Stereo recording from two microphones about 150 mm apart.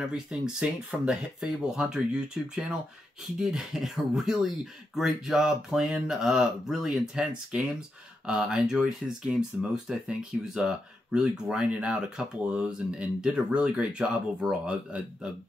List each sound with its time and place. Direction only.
0.1 s speech: 5° right (ahead or behind)